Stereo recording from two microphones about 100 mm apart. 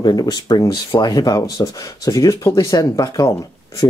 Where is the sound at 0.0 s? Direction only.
45° left (ahead or behind).